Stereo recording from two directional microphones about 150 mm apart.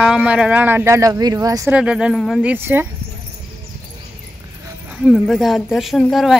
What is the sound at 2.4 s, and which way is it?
Speech, 15° right (ahead or behind).